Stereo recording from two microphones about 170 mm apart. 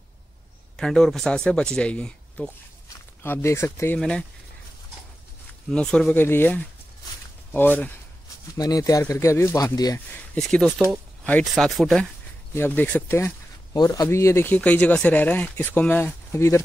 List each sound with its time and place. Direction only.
0.7 s speech: 5° left (ahead or behind)
5.7 s speech: 5° left (ahead or behind)
8.5 s speech: 20° left (ahead or behind)
9.9 s speech: 10° left (ahead or behind)
13.7 s speech: 20° left (ahead or behind)